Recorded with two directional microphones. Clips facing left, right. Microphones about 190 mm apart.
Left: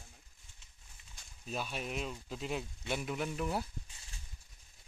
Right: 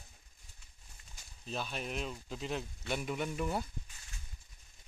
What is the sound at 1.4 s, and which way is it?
Speech, 5° left (ahead or behind).